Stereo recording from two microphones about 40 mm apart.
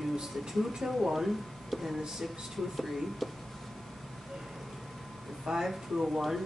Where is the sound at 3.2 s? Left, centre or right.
Centre.